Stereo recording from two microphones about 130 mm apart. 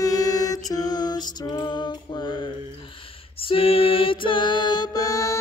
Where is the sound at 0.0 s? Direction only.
30° left (ahead or behind).